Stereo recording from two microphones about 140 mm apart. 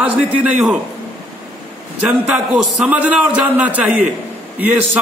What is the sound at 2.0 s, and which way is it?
A man's voice, 5° right (ahead or behind).